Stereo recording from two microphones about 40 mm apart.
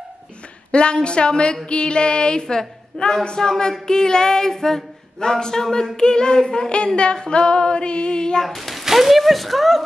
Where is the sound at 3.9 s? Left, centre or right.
Centre.